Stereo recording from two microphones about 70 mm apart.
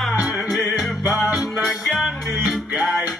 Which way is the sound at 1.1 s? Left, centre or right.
Centre.